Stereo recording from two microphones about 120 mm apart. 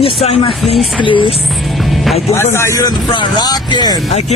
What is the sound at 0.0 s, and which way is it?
Speech, 60° left (ahead or behind).